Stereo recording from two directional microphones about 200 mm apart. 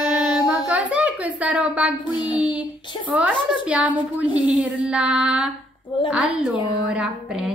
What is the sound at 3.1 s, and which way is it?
A woman's voice, 5° right (ahead or behind).